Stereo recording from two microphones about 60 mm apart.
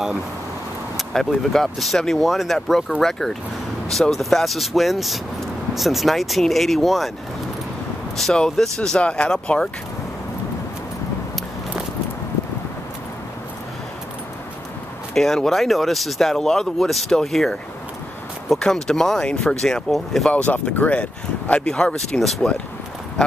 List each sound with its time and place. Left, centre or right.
0.9 s speech: centre
8.2 s speech: centre
15.1 s speech: centre
18.6 s speech: centre
20.4 s speech: left; by 22.5 s centre